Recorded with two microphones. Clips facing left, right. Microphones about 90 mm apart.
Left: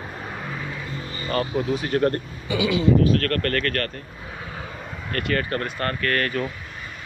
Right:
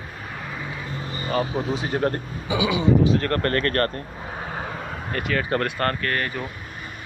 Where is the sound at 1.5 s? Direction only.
25° right (ahead or behind).